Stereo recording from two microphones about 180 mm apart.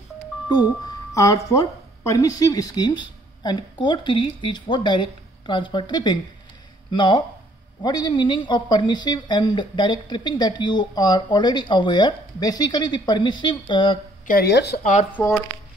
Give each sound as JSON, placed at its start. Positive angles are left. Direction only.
{"t": 0.5, "sound": "a woman's voice", "side_deg": 20}
{"t": 14.2, "sound": "speech", "side_deg": 55}
{"t": 14.8, "sound": "speech", "side_deg": 45}
{"t": 15.1, "sound": "speech", "side_deg": 10}